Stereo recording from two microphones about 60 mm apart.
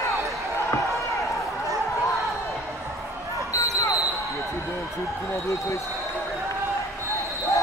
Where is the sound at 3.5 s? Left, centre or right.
Left.